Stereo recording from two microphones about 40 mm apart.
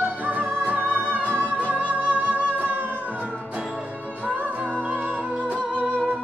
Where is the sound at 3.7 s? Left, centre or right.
Right.